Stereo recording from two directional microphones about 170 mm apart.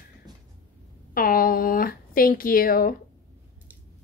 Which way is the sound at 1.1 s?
60° left (ahead or behind).